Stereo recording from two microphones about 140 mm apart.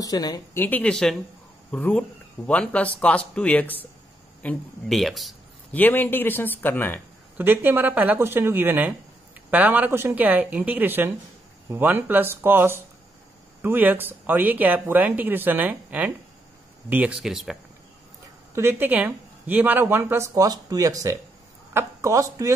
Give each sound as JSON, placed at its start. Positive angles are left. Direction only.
{"t": 0.0, "sound": "speech", "side_deg": 25}
{"t": 0.6, "sound": "speech", "side_deg": 10}
{"t": 5.7, "sound": "speech", "side_deg": 15}
{"t": 7.3, "sound": "speech", "side_deg": -15}
{"t": 18.5, "sound": "speech", "side_deg": -15}